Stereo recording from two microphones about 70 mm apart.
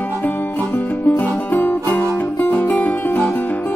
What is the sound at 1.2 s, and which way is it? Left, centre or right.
Music, left.